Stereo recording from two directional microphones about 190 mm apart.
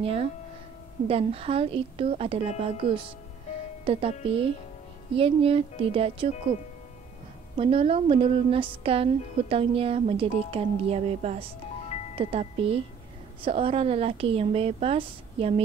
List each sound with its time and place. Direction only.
0.0 s speech: 30° right (ahead or behind)
7.5 s speech: 30° right (ahead or behind)